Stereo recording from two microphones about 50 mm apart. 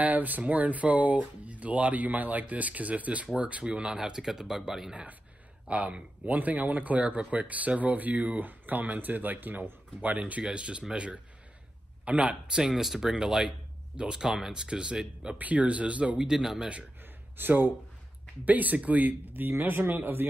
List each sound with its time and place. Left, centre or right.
0.0 s speech: right; by 4.9 s centre
5.7 s speech: right
12.6 s speech: centre
15.3 s speech: right
16.3 s speech: centre
17.4 s speech: right